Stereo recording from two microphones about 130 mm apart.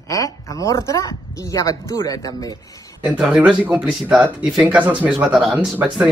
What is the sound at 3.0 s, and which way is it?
Speech, 5° right (ahead or behind).